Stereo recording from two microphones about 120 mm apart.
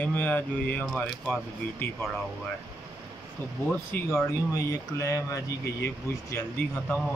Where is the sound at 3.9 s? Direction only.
15° left (ahead or behind).